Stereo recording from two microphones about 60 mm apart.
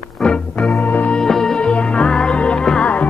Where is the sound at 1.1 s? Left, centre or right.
Centre.